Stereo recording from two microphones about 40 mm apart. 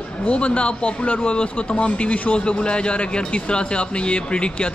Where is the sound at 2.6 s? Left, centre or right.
Left.